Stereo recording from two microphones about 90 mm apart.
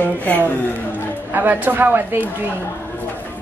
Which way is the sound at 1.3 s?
20° right (ahead or behind).